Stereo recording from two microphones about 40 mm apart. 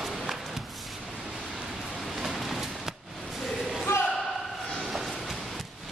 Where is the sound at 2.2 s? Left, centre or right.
Centre.